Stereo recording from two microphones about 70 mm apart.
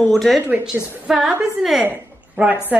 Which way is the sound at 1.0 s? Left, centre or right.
Centre.